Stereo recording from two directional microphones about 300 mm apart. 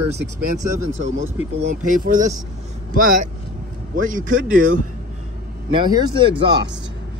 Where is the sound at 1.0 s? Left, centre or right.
Right.